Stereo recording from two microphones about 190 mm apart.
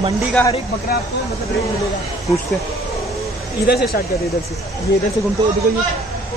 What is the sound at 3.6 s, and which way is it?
Speech, 55° left (ahead or behind).